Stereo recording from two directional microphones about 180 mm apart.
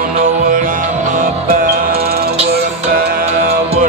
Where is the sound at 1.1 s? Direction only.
55° right (ahead or behind).